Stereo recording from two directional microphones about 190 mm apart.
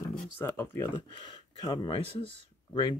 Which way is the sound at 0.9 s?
25° left (ahead or behind).